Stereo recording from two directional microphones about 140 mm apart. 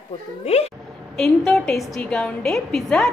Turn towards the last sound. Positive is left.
turn(degrees=5)  # may be behind; listen again after turning